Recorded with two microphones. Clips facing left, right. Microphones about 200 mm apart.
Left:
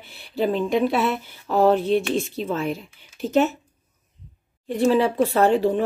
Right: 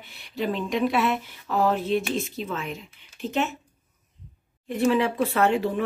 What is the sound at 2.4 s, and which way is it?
Speech, 40° left (ahead or behind).